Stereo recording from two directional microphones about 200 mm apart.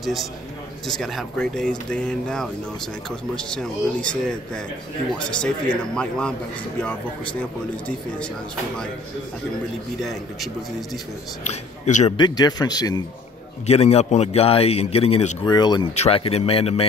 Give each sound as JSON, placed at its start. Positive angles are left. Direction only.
{"t": 0.0, "sound": "speech", "side_deg": 0}
{"t": 5.4, "sound": "a man's voice", "side_deg": 5}
{"t": 11.4, "sound": "a man's voice", "side_deg": 35}
{"t": 12.2, "sound": "speech", "side_deg": 20}
{"t": 13.7, "sound": "a man's voice", "side_deg": 30}